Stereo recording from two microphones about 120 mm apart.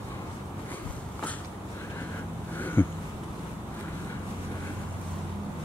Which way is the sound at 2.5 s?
15° left (ahead or behind).